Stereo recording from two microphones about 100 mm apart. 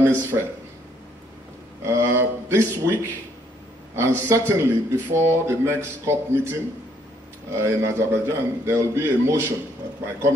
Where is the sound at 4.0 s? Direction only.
25° right (ahead or behind).